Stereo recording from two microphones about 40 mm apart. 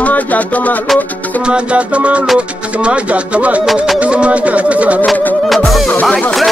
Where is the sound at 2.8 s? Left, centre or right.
Right.